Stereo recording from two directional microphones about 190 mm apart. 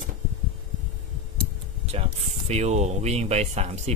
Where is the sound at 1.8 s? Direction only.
35° right (ahead or behind).